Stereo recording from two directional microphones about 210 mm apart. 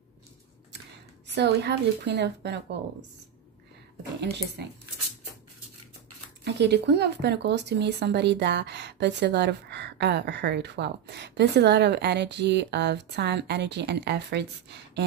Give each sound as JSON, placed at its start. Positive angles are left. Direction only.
{"t": 1.2, "sound": "speech", "side_deg": -55}
{"t": 4.6, "sound": "speech", "side_deg": -50}
{"t": 6.4, "sound": "speech", "side_deg": -55}